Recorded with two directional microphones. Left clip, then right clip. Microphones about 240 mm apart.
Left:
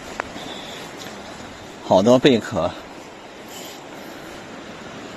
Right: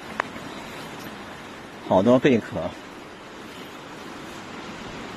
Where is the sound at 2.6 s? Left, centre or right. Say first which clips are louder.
Left 7 dB; left.